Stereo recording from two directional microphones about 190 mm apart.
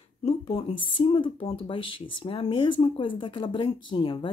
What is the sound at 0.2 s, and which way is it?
Speech, 30° left (ahead or behind).